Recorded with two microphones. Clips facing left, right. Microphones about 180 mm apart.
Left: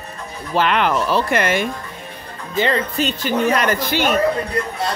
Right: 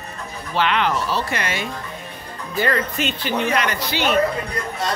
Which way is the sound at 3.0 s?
40° left (ahead or behind).